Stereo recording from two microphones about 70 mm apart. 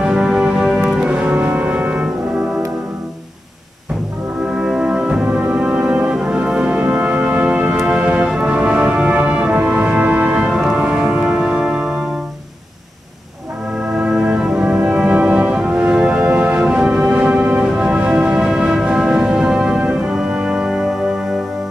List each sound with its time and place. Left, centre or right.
0.0 s music: centre
1.3 s brass instrument: right
4.6 s music: centre
13.9 s music: centre
20.1 s music: centre